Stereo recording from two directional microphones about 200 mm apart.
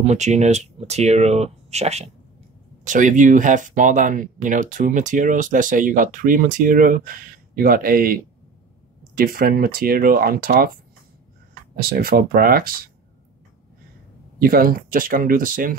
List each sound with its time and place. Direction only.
0.0 s speech: 35° right (ahead or behind)
11.8 s speech: 45° right (ahead or behind)
14.4 s speech: 45° right (ahead or behind)